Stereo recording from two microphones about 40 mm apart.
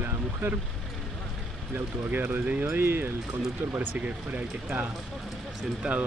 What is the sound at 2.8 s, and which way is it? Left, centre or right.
Speech, right.